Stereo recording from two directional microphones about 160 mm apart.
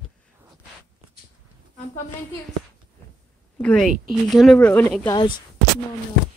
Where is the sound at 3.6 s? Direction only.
5° left (ahead or behind).